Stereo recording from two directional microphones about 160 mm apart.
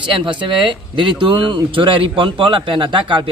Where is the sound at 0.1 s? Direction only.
30° right (ahead or behind).